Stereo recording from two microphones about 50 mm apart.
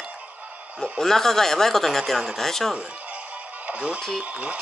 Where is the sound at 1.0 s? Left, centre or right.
Centre.